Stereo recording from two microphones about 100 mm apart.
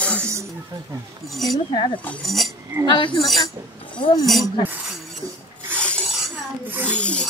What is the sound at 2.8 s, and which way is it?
Speech, 55° left (ahead or behind).